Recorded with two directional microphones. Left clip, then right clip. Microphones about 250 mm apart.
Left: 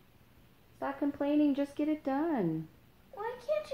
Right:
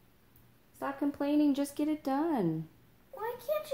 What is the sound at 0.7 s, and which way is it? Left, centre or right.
A woman's voice, right.